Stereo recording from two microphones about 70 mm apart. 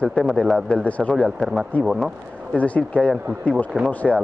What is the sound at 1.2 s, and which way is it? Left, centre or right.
Speech, centre.